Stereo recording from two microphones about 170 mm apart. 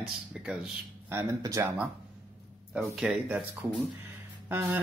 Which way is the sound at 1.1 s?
15° right (ahead or behind).